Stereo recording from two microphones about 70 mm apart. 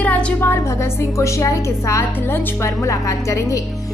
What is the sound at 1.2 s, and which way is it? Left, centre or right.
Music, left.